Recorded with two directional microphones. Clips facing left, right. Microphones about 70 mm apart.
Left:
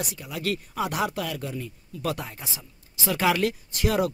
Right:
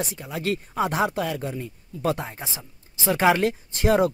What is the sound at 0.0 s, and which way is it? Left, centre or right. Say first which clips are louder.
Speech: right 2 dB; right.